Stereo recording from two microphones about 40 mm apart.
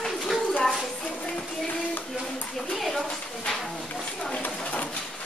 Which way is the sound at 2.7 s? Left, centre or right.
Centre.